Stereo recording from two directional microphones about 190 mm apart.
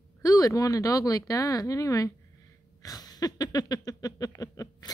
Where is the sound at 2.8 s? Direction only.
20° left (ahead or behind).